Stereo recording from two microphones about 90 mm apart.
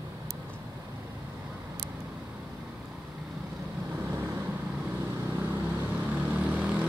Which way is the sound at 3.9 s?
25° right (ahead or behind).